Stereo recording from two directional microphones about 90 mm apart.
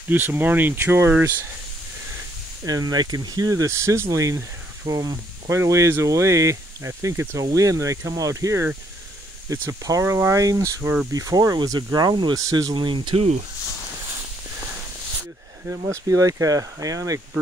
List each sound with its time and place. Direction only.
0.1 s speech: 25° right (ahead or behind)
2.6 s speech: 45° right (ahead or behind)
5.6 s speech: 35° right (ahead or behind)
12.7 s speech: 65° right (ahead or behind)
15.9 s speech: 40° right (ahead or behind)